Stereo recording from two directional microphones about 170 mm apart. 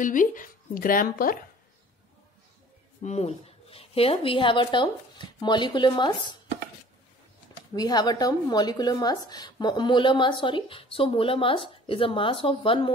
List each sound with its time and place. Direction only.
0.0 s speech: 50° left (ahead or behind)
3.0 s speech: 40° left (ahead or behind)
7.7 s a woman's voice: 25° left (ahead or behind)